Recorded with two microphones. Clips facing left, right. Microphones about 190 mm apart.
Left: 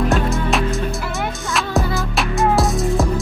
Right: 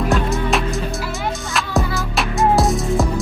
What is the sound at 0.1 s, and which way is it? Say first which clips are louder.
Music: even; centre (ahead or behind).